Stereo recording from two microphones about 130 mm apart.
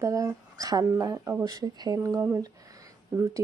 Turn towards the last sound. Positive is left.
turn(degrees=-25)  # may be behind; listen again after turning